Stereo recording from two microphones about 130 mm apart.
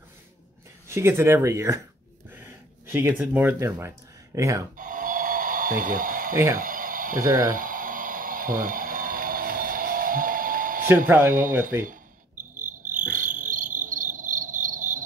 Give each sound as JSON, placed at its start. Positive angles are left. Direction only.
{"t": 0.8, "sound": "speech", "side_deg": -20}
{"t": 4.7, "sound": "a sound", "side_deg": -90}
{"t": 6.3, "sound": "speech", "side_deg": -25}
{"t": 6.6, "sound": "a sound", "side_deg": -90}
{"t": 7.2, "sound": "speech", "side_deg": -25}
{"t": 7.5, "sound": "a sound", "side_deg": -90}
{"t": 11.1, "sound": "speech", "side_deg": -15}
{"t": 12.5, "sound": "frog", "side_deg": -80}
{"t": 13.1, "sound": "cricket", "side_deg": -85}